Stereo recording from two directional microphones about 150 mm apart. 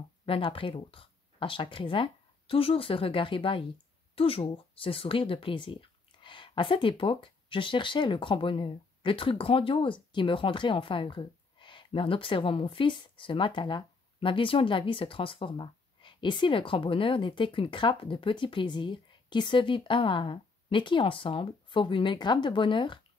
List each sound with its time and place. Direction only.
0.2 s speech: 35° left (ahead or behind)